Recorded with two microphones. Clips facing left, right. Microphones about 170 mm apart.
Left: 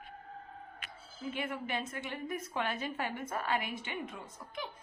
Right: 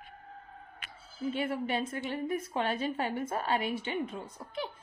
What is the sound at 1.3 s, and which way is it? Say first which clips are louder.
A woman's voice: right 5 dB; 30° right (ahead or behind).